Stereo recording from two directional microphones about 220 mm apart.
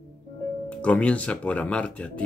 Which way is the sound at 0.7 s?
5° left (ahead or behind).